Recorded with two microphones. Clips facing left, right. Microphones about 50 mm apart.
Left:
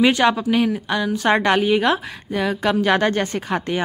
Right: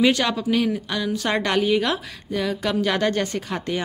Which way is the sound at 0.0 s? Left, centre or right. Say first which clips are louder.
Left 4 dB; left.